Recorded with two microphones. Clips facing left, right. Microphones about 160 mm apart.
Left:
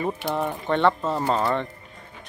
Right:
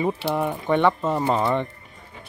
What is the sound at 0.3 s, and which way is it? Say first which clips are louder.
Speech: right 1 dB; 10° right (ahead or behind).